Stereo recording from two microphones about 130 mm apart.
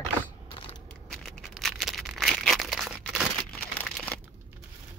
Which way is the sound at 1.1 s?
5° left (ahead or behind).